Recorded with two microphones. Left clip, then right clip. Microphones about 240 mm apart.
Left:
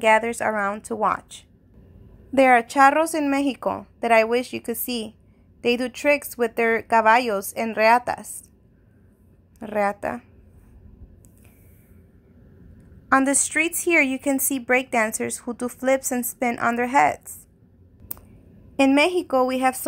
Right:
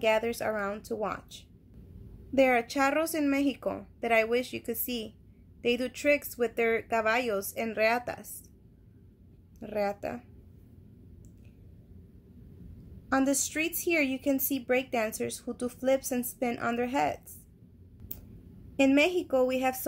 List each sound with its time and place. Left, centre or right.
0.0 s speech: centre
2.3 s speech: left
9.6 s speech: left
13.1 s speech: left
18.8 s speech: left